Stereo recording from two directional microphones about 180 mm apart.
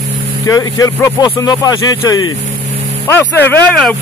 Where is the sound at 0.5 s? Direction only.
20° left (ahead or behind).